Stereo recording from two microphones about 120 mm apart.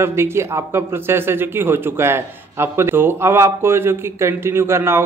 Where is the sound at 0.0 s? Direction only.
20° right (ahead or behind).